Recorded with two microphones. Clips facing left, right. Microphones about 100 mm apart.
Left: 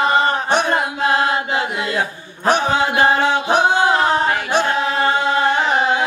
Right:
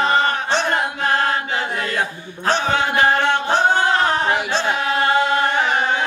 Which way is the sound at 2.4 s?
10° left (ahead or behind).